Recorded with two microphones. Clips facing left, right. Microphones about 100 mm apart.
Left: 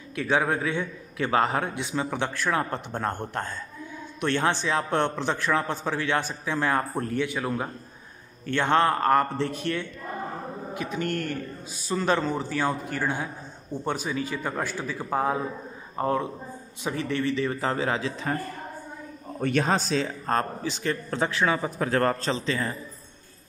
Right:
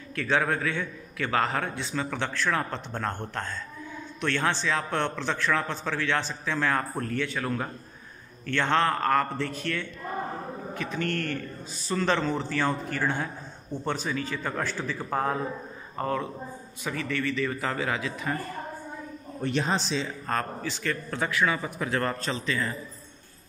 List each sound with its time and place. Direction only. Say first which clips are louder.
0.1 s a man's voice: left 2 dB; 15° left (ahead or behind); by 18.3 s 30° left (ahead or behind)
19.4 s a man's voice: left 3 dB; 50° left (ahead or behind)
20.2 s a man's voice: left 3 dB; 25° left (ahead or behind)